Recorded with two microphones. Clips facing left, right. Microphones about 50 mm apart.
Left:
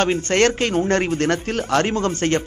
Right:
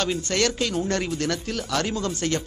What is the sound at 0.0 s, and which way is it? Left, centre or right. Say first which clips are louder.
A man's voice: left 7 dB; left.